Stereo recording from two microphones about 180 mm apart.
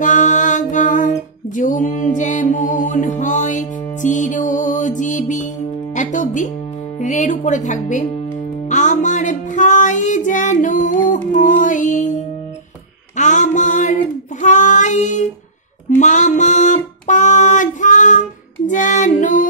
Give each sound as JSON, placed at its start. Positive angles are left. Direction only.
{"t": 0.0, "sound": "music", "side_deg": 45}
{"t": 7.0, "sound": "speech", "side_deg": 40}
{"t": 8.6, "sound": "music", "side_deg": 40}
{"t": 13.1, "sound": "music", "side_deg": 40}
{"t": 14.4, "sound": "child singing", "side_deg": 45}
{"t": 16.0, "sound": "music", "side_deg": 40}
{"t": 18.7, "sound": "female singing", "side_deg": 45}